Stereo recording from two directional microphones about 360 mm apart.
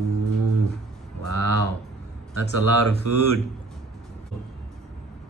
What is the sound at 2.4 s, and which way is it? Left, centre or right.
Speech, left.